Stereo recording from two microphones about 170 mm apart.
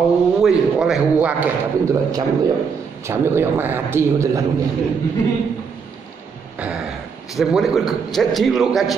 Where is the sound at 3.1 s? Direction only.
15° right (ahead or behind).